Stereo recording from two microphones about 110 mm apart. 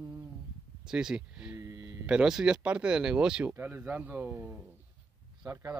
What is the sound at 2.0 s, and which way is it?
Speech, 5° right (ahead or behind).